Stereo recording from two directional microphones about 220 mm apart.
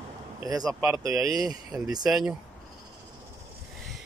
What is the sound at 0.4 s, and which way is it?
Speech, 15° right (ahead or behind).